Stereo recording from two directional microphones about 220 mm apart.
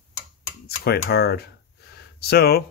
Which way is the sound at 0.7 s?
45° left (ahead or behind).